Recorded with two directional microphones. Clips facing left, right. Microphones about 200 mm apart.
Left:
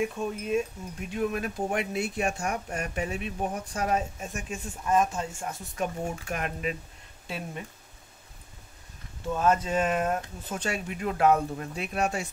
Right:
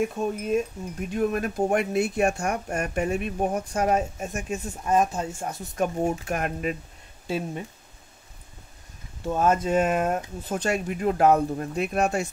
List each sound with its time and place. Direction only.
0.0 s speech: 45° right (ahead or behind)
9.3 s speech: 40° right (ahead or behind)